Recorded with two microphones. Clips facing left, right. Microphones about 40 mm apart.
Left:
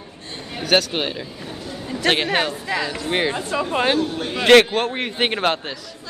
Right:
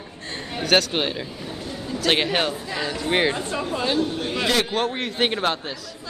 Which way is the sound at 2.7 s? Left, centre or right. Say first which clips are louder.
Left 5 dB; left.